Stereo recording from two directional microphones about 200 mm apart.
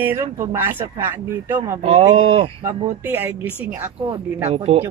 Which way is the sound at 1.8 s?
30° right (ahead or behind).